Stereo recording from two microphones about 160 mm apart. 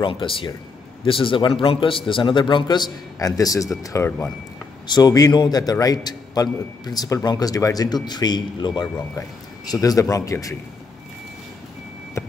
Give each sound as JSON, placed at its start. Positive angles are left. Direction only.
{"t": 0.0, "sound": "a man's voice", "side_deg": 30}